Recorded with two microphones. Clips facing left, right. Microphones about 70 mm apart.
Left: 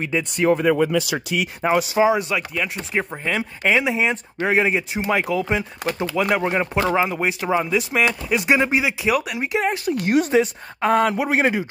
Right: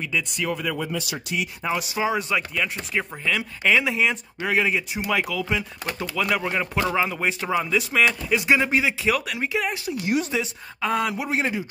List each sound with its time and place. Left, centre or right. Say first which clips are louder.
0.0 s speech: left 6 dB; left
0.9 s speech: left 6 dB; left
1.6 s a woman's voice: left 9 dB; left
2.0 s speech: left 6 dB; centre
2.9 s speech: left 2 dB; left
9.9 s a woman's voice: left 7 dB; left